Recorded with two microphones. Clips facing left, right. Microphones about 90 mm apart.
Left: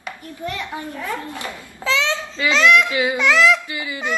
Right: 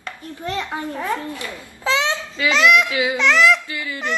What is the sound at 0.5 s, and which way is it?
Speech, 25° right (ahead or behind).